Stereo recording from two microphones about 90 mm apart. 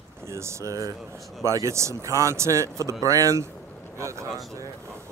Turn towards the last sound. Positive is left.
turn(degrees=-35)  # may be behind; listen again after turning